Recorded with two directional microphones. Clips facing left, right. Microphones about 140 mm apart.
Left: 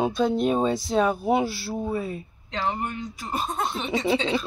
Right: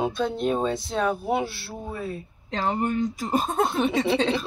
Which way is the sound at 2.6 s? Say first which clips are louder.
Right 5 dB; 40° right (ahead or behind).